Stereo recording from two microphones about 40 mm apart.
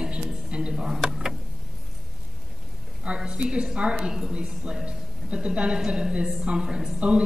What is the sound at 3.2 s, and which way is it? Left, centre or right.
A woman's voice, right.